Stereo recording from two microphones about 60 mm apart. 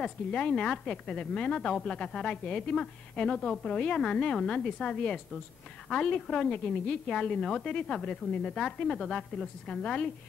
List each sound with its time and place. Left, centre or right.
0.0 s speech: centre